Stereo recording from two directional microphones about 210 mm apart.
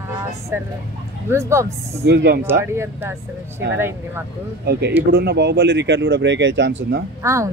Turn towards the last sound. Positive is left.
turn(degrees=-15)  # may be behind; listen again after turning